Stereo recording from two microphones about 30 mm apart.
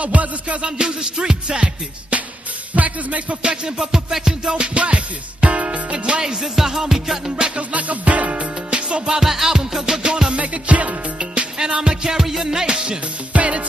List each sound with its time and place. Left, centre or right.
0.0 s music: right
0.6 s music: right
2.7 s music: right
3.4 s music: right
4.7 s music: right
6.2 s music: centre
7.5 s music: right
9.2 s music: centre
10.3 s music: right
11.1 s music: right
12.6 s music: right
13.3 s music: right